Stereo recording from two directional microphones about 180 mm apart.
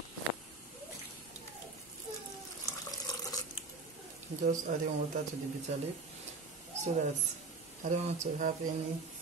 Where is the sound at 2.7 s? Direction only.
20° left (ahead or behind).